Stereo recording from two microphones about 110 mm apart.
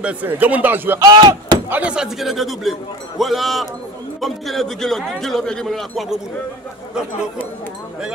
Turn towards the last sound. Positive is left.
turn(degrees=15)  # may be behind; listen again after turning